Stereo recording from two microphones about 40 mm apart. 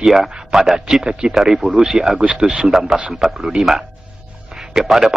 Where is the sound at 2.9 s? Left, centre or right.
Right.